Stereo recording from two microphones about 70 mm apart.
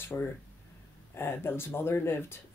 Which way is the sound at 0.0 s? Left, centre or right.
Left.